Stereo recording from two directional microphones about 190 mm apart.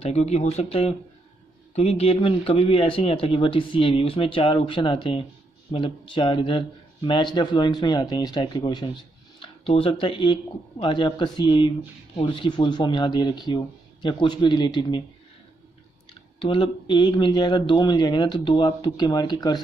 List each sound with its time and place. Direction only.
0.0 s speech: 35° left (ahead or behind)
16.3 s speech: 25° left (ahead or behind)